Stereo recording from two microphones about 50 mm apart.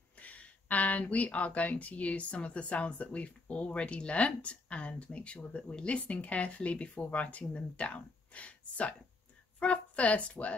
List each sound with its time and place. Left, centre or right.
0.2 s a woman's voice: left